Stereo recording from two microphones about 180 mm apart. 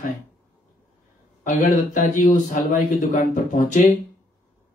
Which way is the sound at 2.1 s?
45° left (ahead or behind).